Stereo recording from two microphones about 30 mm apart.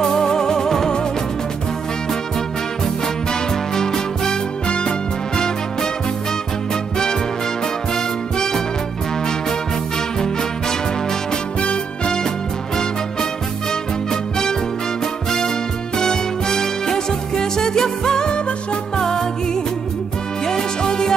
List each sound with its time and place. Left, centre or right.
0.0 s music: centre
3.7 s music: centre
4.6 s music: left
11.6 s music: left
16.0 s music: left